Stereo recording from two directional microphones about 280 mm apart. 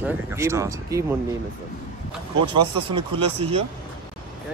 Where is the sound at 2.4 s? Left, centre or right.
Centre.